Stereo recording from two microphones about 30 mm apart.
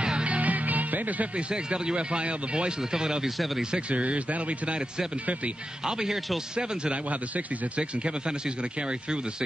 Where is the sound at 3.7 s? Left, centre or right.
Right.